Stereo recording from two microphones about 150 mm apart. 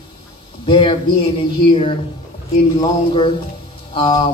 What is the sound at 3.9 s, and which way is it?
Speech, 35° left (ahead or behind).